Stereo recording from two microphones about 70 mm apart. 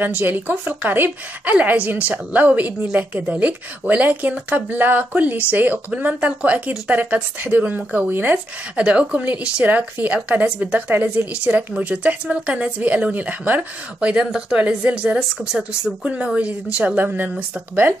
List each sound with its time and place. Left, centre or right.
0.2 s a woman's voice: right; by 16.1 s centre
16.7 s a woman's voice: right